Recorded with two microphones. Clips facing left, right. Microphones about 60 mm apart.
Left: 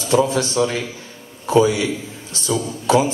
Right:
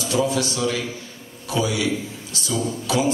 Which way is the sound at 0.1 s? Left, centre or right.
Left.